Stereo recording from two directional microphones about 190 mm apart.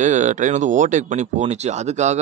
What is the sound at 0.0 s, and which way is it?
Speech, 40° right (ahead or behind).